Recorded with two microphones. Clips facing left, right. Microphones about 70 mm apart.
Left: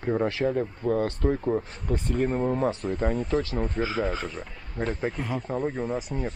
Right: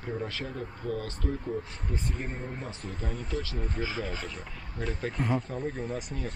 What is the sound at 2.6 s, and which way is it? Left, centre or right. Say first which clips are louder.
Speech: left 12 dB; left.